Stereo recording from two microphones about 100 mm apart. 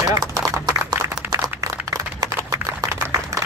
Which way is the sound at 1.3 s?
35° right (ahead or behind).